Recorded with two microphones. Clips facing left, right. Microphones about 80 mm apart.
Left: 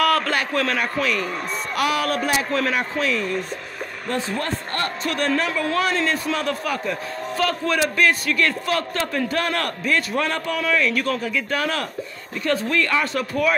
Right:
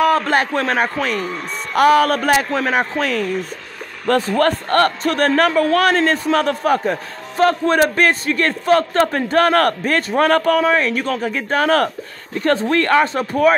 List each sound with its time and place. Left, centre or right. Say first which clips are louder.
0.0 s a man's voice: right 5 dB; right
4.4 s a man's voice: right 11 dB; right
13.0 s a man's voice: right 6 dB; right